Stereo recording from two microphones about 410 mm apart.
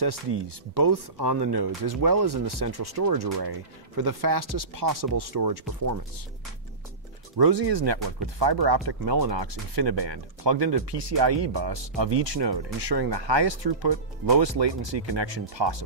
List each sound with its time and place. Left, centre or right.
0.0 s speech: right
7.3 s speech: right
9.3 s speech: right